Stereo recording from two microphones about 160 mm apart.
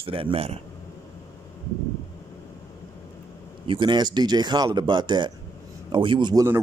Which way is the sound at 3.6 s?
30° right (ahead or behind).